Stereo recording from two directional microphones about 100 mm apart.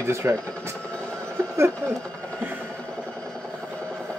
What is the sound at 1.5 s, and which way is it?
Speech, 25° right (ahead or behind).